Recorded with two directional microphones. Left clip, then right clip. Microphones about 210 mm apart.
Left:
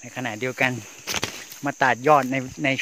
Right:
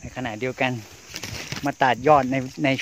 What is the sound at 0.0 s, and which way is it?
Speech, 5° right (ahead or behind).